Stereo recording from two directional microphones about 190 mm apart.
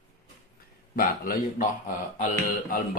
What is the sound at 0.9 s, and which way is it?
A man's voice, 50° left (ahead or behind).